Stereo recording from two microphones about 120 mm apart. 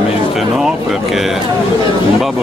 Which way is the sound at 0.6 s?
Centre (ahead or behind).